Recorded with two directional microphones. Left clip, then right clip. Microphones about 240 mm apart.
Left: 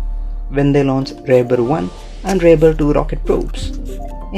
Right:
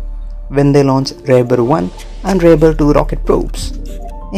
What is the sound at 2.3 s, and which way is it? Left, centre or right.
A man's voice, right.